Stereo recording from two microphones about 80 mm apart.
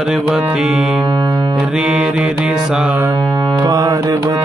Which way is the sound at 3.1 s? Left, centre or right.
Right.